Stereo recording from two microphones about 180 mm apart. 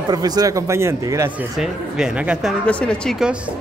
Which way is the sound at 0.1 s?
20° right (ahead or behind).